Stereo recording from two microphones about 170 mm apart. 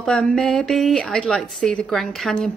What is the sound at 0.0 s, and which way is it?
A woman's voice, 5° left (ahead or behind).